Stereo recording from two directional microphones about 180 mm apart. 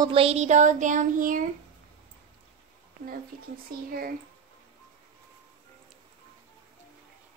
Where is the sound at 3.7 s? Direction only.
55° right (ahead or behind).